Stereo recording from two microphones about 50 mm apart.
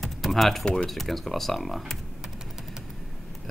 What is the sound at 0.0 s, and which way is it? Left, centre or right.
Typing, centre.